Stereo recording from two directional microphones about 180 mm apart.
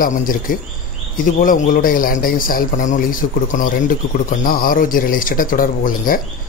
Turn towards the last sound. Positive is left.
turn(degrees=50)  # may be behind; listen again after turning